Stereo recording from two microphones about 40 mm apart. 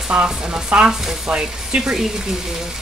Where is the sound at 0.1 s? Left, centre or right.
Right.